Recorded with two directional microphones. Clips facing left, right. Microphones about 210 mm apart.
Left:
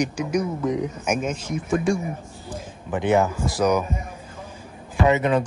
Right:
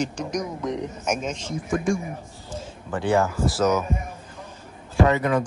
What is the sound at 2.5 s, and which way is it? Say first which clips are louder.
A man's voice: left 2 dB; 20° left (ahead or behind).